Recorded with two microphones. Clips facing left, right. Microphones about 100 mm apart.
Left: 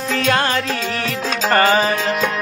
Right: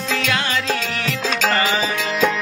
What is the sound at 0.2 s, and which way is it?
Music, 40° left (ahead or behind).